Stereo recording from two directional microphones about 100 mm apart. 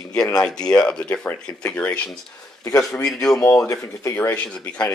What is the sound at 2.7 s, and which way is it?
A man's voice, 35° left (ahead or behind).